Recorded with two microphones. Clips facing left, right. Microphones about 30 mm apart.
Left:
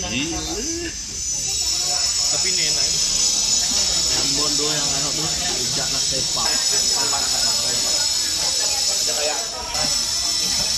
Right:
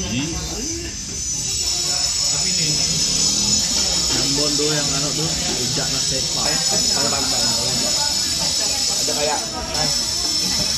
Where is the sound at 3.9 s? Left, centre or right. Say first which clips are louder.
Right 1 dB; centre.